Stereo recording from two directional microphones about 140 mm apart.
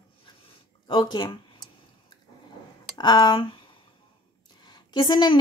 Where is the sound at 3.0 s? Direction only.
30° left (ahead or behind).